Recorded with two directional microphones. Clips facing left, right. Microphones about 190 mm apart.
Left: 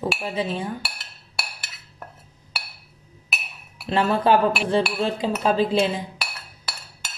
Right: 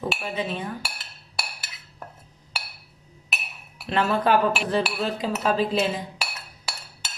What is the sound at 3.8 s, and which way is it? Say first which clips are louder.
Speech: left 2 dB; 30° left (ahead or behind).